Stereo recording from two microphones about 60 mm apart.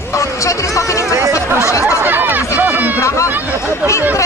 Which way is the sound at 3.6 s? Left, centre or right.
Left.